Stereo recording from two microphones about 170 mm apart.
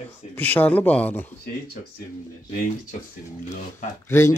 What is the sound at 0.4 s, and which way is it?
Speech, 10° left (ahead or behind).